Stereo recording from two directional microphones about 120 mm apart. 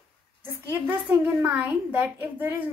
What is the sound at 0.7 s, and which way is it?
A child's voice, 15° right (ahead or behind).